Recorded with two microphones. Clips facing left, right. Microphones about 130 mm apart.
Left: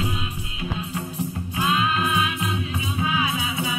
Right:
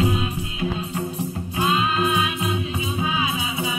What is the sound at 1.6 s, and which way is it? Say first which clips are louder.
Music: right 2 dB; 25° right (ahead or behind).